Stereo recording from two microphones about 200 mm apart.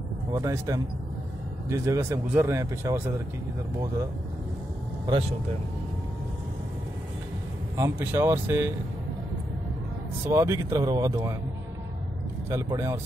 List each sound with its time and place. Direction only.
0.3 s speech: 15° right (ahead or behind)
7.7 s speech: 10° right (ahead or behind)
10.2 s speech: 15° right (ahead or behind)
12.4 s speech: 15° right (ahead or behind)